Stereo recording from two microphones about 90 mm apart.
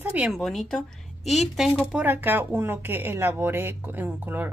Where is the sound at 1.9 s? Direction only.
20° right (ahead or behind).